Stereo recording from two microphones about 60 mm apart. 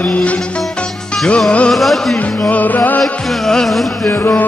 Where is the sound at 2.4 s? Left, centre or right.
Left.